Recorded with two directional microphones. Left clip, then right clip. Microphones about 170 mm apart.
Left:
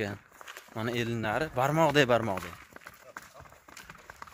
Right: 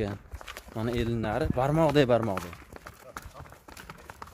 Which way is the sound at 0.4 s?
35° left (ahead or behind).